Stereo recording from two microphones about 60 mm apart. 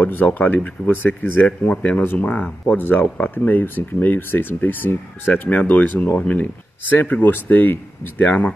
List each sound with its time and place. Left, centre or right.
0.0 s speech: left
1.8 s speech: left